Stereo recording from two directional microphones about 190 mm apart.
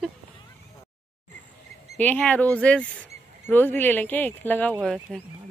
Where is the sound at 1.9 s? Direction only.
10° left (ahead or behind).